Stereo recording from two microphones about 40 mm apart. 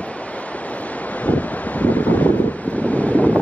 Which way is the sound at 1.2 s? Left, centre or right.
Left.